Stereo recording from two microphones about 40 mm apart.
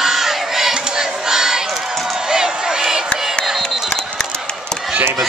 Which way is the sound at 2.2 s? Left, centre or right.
Centre.